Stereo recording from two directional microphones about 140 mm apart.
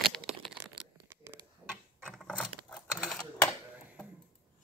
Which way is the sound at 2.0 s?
5° left (ahead or behind).